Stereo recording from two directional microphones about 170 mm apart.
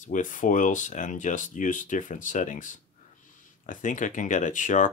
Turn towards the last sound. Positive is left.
turn(degrees=50)  # may be behind; listen again after turning